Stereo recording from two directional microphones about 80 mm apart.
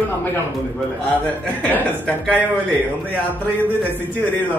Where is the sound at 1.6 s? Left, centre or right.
Centre.